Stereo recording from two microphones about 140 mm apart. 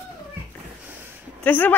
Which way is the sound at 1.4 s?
15° left (ahead or behind).